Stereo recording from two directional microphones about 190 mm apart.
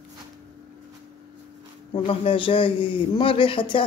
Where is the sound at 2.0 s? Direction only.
30° left (ahead or behind).